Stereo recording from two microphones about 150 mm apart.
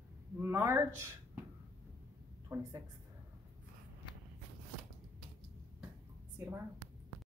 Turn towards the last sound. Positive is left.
turn(degrees=-15)  # may be behind; listen again after turning